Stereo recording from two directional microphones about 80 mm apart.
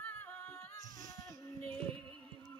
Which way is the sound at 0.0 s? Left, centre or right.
Left.